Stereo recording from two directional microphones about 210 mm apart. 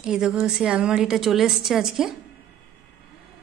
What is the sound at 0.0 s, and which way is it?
Speech, 5° right (ahead or behind).